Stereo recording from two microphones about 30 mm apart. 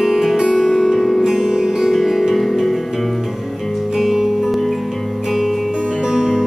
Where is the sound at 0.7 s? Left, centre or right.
Centre.